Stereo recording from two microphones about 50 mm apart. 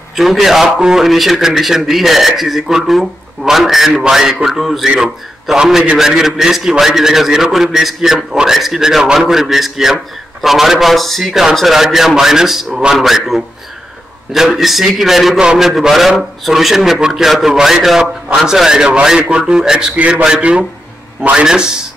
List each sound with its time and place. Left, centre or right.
0.1 s a man's voice: centre
20.0 s a man's voice: right
20.2 s a man's voice: centre
21.5 s a man's voice: centre